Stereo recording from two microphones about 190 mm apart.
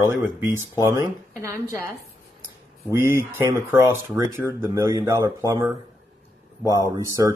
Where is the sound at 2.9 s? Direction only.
15° right (ahead or behind).